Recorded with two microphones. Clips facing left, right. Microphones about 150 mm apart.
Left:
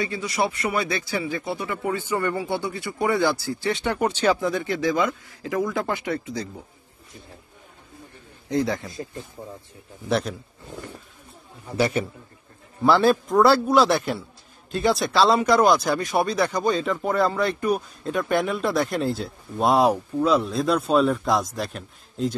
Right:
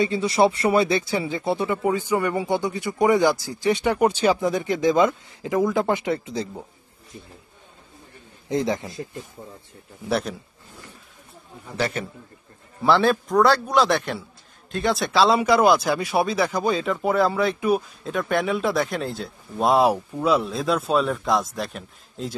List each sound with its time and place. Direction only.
0.0 s speech: 25° right (ahead or behind)
8.5 s speech: 20° right (ahead or behind)
10.0 s speech: centre (ahead or behind)
11.7 s a man's voice: 10° left (ahead or behind)